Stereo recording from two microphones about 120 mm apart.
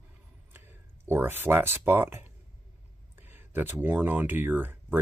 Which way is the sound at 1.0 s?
20° right (ahead or behind).